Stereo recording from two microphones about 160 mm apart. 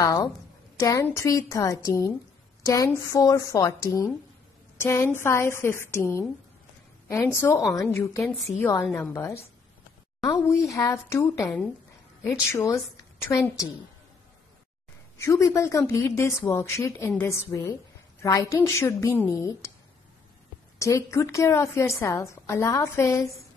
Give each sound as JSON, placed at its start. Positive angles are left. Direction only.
{"t": 0.0, "sound": "a woman's voice", "side_deg": 20}
{"t": 8.6, "sound": "a woman's voice", "side_deg": 5}
{"t": 8.9, "sound": "a woman's voice", "side_deg": 15}
{"t": 15.1, "sound": "a woman's voice", "side_deg": 20}
{"t": 20.8, "sound": "a woman's voice", "side_deg": 20}